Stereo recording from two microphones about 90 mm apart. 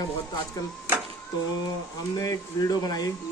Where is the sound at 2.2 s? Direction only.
45° left (ahead or behind).